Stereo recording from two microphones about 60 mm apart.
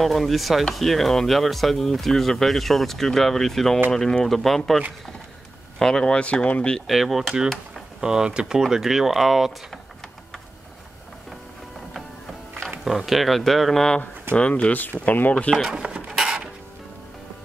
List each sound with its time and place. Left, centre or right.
0.0 s speech: centre
6.9 s speech: centre
12.8 s speech: centre
14.3 s speech: centre
15.5 s a sound: centre